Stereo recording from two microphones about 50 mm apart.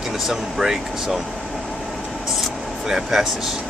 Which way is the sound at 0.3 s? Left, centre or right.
Centre.